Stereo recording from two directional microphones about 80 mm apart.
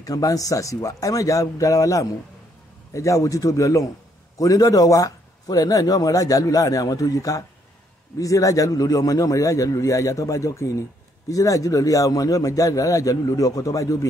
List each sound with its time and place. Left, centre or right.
0.0 s a man's voice: left